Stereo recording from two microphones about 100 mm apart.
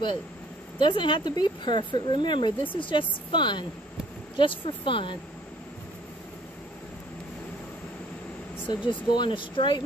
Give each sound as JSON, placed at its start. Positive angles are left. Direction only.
{"t": 0.7, "sound": "speech", "side_deg": 50}
{"t": 8.6, "sound": "speech", "side_deg": 55}